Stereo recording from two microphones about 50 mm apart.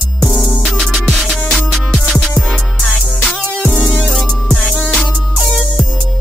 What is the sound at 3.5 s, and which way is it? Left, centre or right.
Music, left.